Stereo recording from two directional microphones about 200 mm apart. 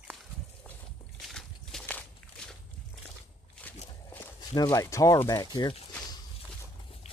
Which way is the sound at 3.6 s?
5° left (ahead or behind).